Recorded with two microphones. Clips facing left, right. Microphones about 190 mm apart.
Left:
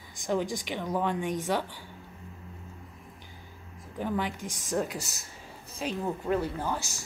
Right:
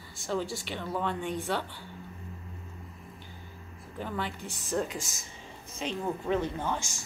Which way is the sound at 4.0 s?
10° left (ahead or behind).